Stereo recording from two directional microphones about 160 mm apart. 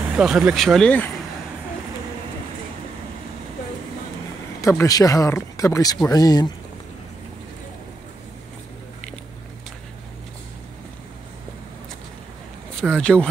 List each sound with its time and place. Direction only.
0.1 s speech: 5° right (ahead or behind)
4.6 s speech: 20° left (ahead or behind)
12.9 s speech: 5° left (ahead or behind)